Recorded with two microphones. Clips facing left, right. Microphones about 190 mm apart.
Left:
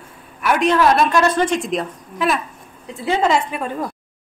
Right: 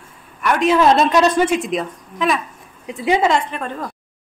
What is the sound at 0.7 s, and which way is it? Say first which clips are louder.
Speech: right 4 dB; 25° right (ahead or behind).